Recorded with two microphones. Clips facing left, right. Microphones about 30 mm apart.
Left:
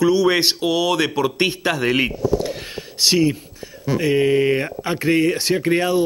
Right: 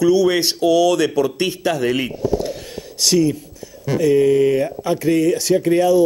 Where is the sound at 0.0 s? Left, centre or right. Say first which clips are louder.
Right 1 dB; left.